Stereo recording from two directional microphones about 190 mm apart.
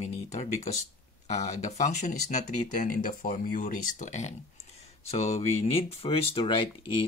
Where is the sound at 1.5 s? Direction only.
40° left (ahead or behind).